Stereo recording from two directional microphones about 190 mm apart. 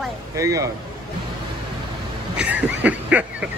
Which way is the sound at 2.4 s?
10° right (ahead or behind).